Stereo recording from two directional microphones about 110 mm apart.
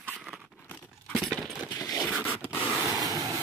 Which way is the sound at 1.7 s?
30° left (ahead or behind).